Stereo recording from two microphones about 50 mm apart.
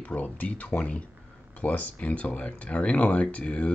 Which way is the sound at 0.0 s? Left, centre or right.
Left.